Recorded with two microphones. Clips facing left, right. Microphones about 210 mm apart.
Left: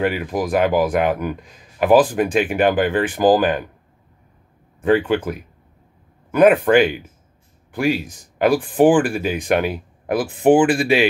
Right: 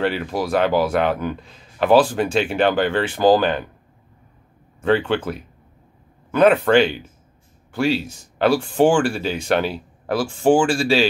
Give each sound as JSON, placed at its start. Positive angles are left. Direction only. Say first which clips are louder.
{"t": 0.2, "sound": "speech", "louder": "left 1 dB", "side_deg": 15}
{"t": 5.0, "sound": "speech", "louder": "left 2 dB", "side_deg": 10}